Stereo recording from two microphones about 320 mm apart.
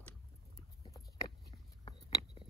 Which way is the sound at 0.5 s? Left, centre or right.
Centre.